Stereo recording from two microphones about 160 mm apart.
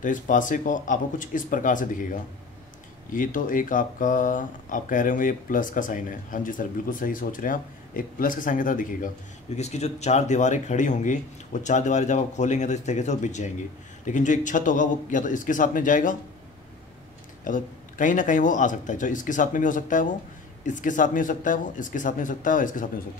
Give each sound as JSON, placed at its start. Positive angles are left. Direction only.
{"t": 0.0, "sound": "speech", "side_deg": 55}
{"t": 9.6, "sound": "speech", "side_deg": 45}
{"t": 17.5, "sound": "speech", "side_deg": 55}